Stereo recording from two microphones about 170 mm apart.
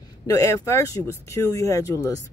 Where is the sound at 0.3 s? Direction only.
20° left (ahead or behind).